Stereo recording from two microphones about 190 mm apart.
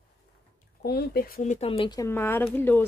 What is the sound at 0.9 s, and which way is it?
Speech, 55° left (ahead or behind).